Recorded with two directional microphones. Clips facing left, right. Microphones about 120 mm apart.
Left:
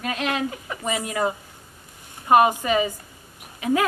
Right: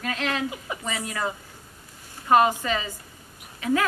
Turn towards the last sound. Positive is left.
turn(degrees=20)  # may be behind; listen again after turning